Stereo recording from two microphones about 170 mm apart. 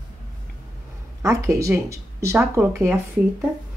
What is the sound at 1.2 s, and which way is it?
Speech, 20° right (ahead or behind).